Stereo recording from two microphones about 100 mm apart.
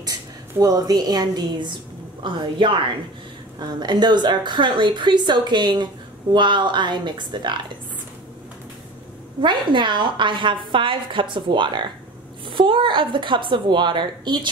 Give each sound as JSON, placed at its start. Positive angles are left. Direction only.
{"t": 0.6, "sound": "a woman's voice", "side_deg": -40}
{"t": 9.4, "sound": "a woman's voice", "side_deg": -50}